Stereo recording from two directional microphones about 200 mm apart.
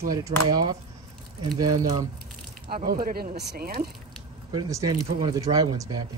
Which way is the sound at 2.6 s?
45° right (ahead or behind).